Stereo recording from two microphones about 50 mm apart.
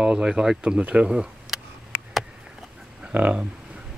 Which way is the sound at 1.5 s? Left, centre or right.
Centre.